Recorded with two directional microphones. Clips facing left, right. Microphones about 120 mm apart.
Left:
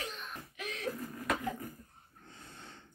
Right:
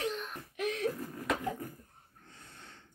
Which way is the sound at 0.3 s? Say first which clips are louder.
Right 8 dB; 55° right (ahead or behind).